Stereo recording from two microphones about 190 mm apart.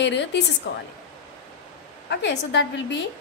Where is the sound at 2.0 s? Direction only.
65° left (ahead or behind).